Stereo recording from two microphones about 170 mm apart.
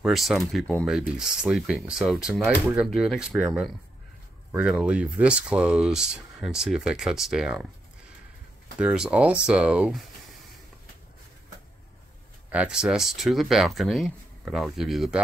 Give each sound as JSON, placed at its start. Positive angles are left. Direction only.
{"t": 0.0, "sound": "speech", "side_deg": 0}
{"t": 8.7, "sound": "speech", "side_deg": -5}
{"t": 12.4, "sound": "speech", "side_deg": -5}